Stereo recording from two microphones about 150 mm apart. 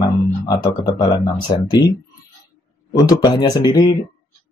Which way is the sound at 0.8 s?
30° left (ahead or behind).